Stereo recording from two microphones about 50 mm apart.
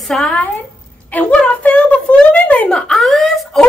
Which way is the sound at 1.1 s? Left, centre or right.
Left.